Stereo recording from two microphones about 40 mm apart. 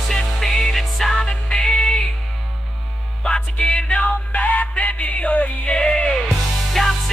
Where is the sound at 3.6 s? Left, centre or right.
Left.